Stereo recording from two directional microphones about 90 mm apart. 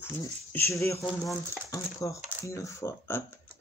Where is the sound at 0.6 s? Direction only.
30° left (ahead or behind).